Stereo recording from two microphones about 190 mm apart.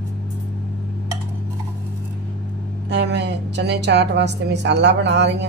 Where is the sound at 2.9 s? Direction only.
65° right (ahead or behind).